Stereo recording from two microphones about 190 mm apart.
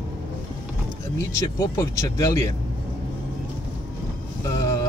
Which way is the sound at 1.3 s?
15° left (ahead or behind).